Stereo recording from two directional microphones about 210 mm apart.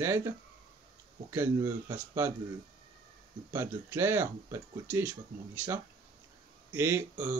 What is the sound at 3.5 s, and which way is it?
Speech, 10° right (ahead or behind).